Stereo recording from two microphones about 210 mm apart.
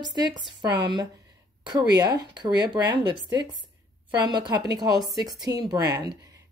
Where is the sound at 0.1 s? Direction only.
20° right (ahead or behind).